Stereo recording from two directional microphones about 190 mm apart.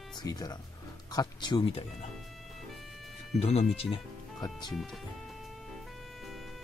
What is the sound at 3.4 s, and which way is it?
Speech, 35° left (ahead or behind).